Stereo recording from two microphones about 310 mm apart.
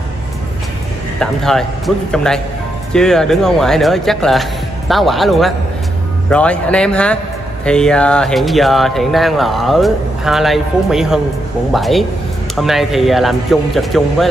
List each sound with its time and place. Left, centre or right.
1.2 s speech: centre